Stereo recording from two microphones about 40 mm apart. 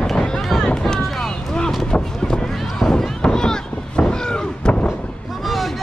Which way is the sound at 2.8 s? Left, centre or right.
Centre.